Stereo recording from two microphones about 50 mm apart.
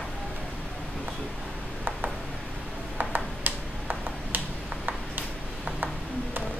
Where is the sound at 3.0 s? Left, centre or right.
Right.